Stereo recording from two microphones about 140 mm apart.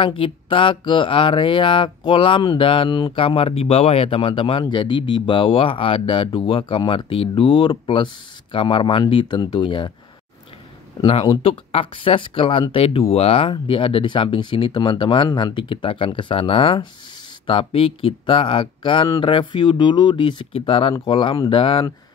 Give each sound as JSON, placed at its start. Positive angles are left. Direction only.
{"t": 0.0, "sound": "speech", "side_deg": 40}
{"t": 11.1, "sound": "speech", "side_deg": 40}